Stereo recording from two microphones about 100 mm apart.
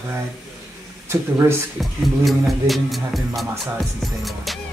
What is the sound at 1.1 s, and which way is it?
Speech, 25° right (ahead or behind).